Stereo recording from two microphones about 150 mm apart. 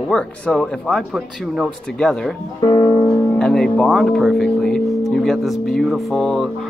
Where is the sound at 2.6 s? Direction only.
30° left (ahead or behind).